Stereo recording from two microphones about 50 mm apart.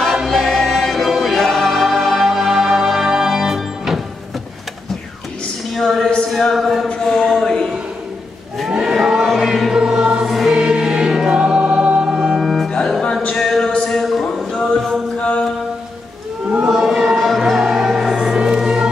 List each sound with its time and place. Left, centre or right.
0.1 s choir: centre
5.8 s a sound: centre
6.0 s music: centre
6.9 s a sound: centre
8.6 s choir: centre
10.2 s music: centre
10.5 s choir: centre
12.4 s music: centre
12.6 s music: centre
13.3 s a sound: centre
15.1 s mantra: left
16.6 s music: centre